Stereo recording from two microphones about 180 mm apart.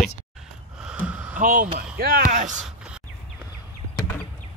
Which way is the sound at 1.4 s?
45° right (ahead or behind).